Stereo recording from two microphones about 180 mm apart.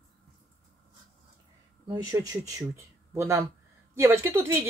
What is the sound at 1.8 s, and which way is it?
Speech, 20° right (ahead or behind).